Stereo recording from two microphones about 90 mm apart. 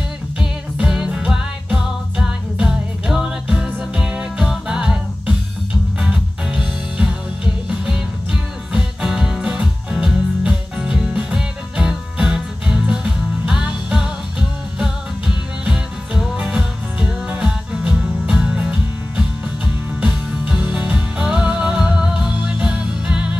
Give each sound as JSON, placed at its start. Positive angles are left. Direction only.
{"t": 0.7, "sound": "music", "side_deg": -10}